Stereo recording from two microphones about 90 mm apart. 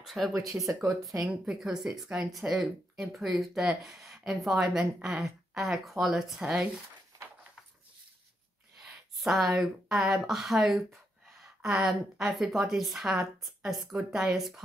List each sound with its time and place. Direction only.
0.0 s speech: centre (ahead or behind)
0.5 s speech: 20° right (ahead or behind)
1.4 s a woman's voice: 10° right (ahead or behind)
8.7 s a woman's voice: 5° right (ahead or behind)